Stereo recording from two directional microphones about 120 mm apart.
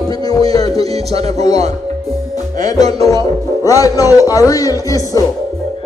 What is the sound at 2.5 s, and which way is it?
Music, 30° left (ahead or behind).